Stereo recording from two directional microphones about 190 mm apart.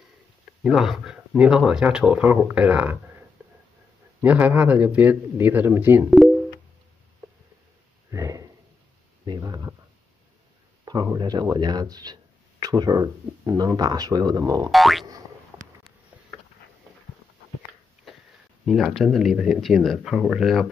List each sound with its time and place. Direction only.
0.7 s speech: centre (ahead or behind)
4.2 s speech: 10° right (ahead or behind)
8.1 s a sound: 15° right (ahead or behind)
9.2 s speech: 20° right (ahead or behind)
10.9 s speech: 20° right (ahead or behind)
14.7 s speech: centre (ahead or behind)
18.7 s speech: centre (ahead or behind)